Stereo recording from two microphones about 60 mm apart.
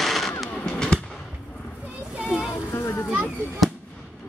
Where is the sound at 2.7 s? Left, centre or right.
Left.